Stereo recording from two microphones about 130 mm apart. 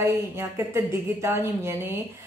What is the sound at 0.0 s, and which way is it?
A woman's voice, 20° right (ahead or behind).